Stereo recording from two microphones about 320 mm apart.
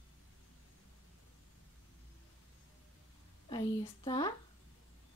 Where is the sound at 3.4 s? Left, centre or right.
Centre.